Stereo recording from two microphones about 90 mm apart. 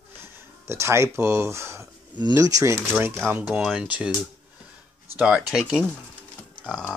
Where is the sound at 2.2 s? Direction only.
45° right (ahead or behind).